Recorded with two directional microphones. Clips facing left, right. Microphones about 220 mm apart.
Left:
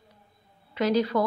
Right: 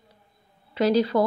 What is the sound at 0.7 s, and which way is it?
Speech, 30° right (ahead or behind).